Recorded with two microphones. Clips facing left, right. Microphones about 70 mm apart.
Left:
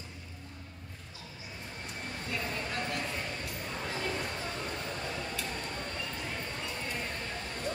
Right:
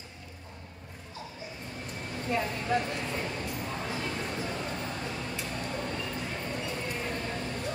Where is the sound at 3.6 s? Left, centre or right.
Centre.